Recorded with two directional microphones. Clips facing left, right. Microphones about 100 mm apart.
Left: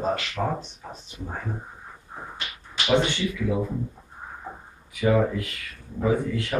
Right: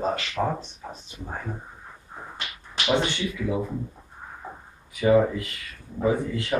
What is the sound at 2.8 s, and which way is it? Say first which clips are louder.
Speech: left 2 dB; 10° right (ahead or behind).